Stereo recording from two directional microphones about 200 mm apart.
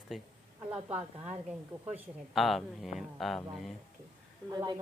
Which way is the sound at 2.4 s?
Centre (ahead or behind).